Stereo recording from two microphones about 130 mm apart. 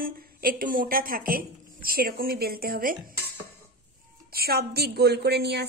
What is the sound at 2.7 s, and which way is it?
Speech, 90° right.